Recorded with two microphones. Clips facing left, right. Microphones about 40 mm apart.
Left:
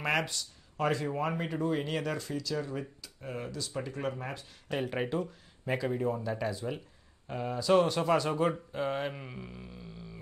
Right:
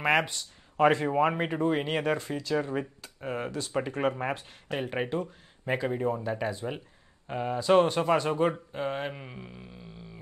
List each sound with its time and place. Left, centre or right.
0.0 s speech: right
4.6 s speech: centre